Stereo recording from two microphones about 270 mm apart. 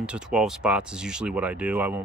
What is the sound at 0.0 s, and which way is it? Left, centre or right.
Speech, centre.